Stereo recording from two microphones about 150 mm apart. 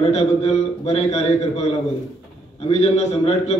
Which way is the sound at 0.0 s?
45° left (ahead or behind).